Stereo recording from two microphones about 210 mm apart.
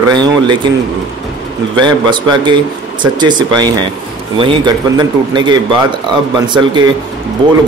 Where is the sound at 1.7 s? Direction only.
20° right (ahead or behind).